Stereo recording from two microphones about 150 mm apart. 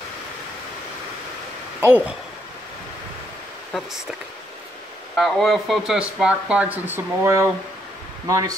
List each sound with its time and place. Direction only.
1.8 s speech: 10° right (ahead or behind)
5.1 s speech: centre (ahead or behind); by 8.5 s 20° right (ahead or behind)